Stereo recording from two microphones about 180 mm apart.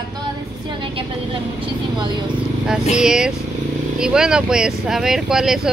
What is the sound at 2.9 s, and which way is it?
Speech, 5° right (ahead or behind).